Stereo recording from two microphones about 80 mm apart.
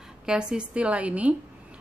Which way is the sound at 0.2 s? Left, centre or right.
Centre.